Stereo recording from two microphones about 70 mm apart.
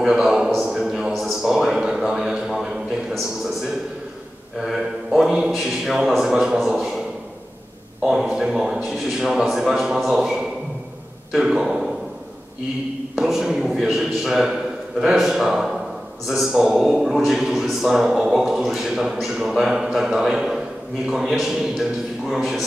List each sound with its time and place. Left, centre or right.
0.0 s a sound: centre
4.6 s mantra: centre
5.5 s a man's voice: centre
8.0 s a man's voice: centre
13.1 s a man's voice: centre